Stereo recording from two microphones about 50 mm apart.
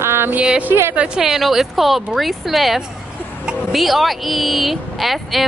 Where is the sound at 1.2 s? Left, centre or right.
Centre.